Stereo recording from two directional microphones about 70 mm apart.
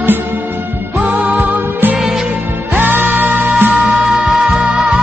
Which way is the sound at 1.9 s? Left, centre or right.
Centre.